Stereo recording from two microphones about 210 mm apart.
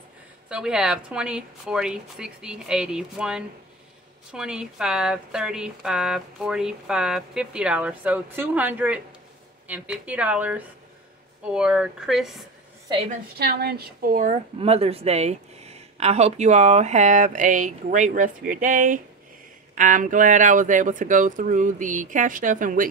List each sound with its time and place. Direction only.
0.5 s speech: 5° right (ahead or behind)
13.4 s a woman's voice: 50° right (ahead or behind)